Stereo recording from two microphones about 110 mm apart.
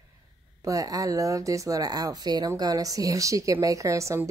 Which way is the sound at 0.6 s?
30° right (ahead or behind).